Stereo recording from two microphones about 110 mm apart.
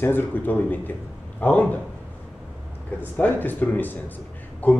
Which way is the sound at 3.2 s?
15° left (ahead or behind).